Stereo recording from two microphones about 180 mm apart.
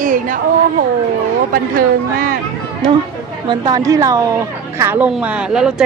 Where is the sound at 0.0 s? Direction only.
50° right (ahead or behind).